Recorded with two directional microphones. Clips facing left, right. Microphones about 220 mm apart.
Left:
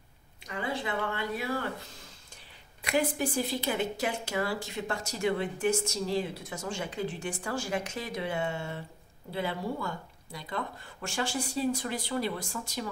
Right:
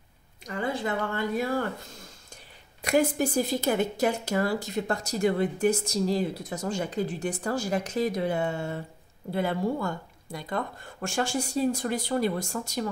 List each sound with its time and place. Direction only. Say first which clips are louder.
0.5 s a woman's voice: right 4 dB; 45° right (ahead or behind)
2.8 s speech: right 5 dB; 45° right (ahead or behind)